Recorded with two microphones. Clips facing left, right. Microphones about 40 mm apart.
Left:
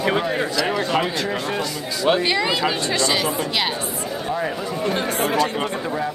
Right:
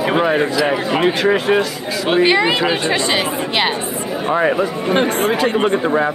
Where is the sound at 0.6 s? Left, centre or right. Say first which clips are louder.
Right 4 dB; centre.